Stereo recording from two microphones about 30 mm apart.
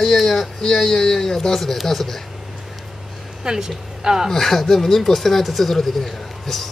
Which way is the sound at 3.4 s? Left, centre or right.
Right.